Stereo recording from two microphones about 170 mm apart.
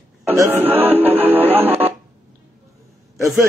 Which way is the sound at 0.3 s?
10° right (ahead or behind).